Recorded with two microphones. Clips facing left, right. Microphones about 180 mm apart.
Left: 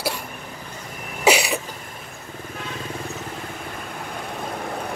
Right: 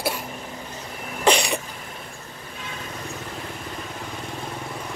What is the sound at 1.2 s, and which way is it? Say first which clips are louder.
Cough: left 1 dB; 5° left (ahead or behind).